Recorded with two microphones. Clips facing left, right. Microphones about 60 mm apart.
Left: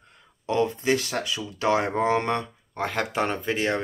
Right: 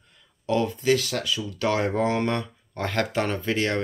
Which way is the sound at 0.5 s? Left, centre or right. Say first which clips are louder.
Right 1 dB; left.